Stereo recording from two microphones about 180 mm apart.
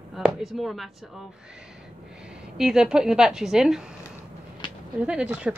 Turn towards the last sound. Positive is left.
turn(degrees=-5)  # may be behind; listen again after turning